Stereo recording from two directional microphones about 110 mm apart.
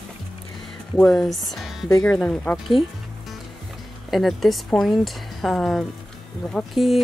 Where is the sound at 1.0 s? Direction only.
5° left (ahead or behind).